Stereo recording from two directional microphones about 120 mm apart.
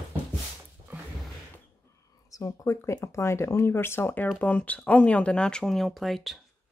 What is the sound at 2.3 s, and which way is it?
Speech, 25° left (ahead or behind).